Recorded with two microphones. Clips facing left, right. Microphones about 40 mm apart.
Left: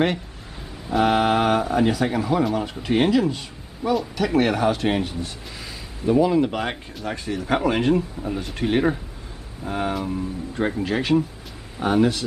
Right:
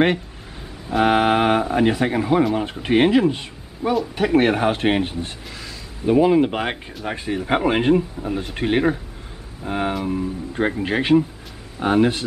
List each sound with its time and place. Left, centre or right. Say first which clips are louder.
1.0 s speech: right 2 dB; right
7.9 s speech: right 3 dB; centre